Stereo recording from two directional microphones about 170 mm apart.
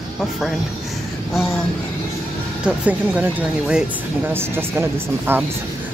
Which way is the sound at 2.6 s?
10° right (ahead or behind).